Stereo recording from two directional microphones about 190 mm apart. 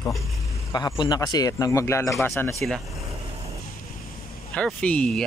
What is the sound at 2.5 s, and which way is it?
Speech, centre (ahead or behind).